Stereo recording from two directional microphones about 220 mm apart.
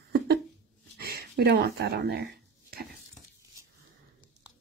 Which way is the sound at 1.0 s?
45° right (ahead or behind).